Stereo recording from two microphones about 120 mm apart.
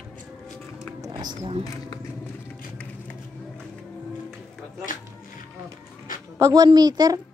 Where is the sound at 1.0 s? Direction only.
35° right (ahead or behind).